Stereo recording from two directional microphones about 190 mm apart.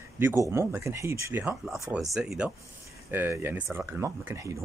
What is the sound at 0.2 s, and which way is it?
Speech, 10° right (ahead or behind).